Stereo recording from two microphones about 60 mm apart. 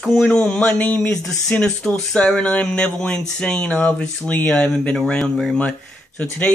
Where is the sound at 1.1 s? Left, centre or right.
Centre.